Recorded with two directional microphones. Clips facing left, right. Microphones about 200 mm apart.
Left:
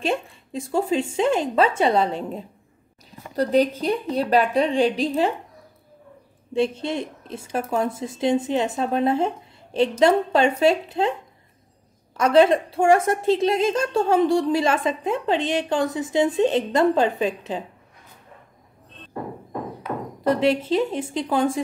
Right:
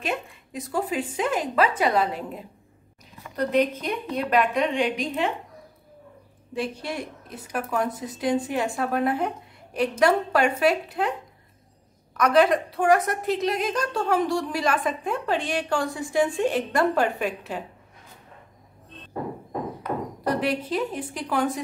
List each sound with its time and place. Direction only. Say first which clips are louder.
0.0 s a woman's voice: left 5 dB; 30° left (ahead or behind)
6.5 s a woman's voice: left 7 dB; 25° left (ahead or behind)
12.2 s a woman's voice: left 3 dB; 25° left (ahead or behind)
20.2 s a woman's voice: left 6 dB; 25° left (ahead or behind)